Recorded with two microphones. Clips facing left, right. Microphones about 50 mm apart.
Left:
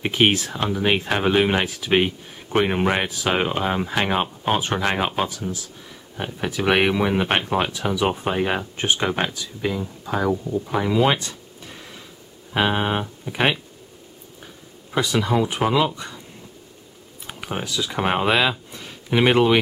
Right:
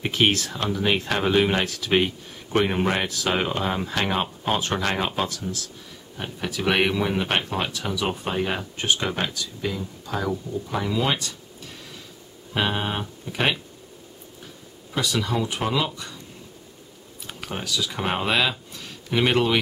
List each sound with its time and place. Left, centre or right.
0.0 s speech: centre
15.0 s speech: centre
17.3 s speech: centre